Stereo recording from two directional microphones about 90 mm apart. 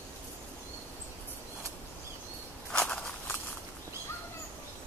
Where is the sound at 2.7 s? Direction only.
5° left (ahead or behind).